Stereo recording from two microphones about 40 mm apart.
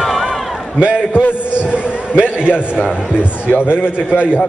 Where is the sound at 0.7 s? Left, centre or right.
Right.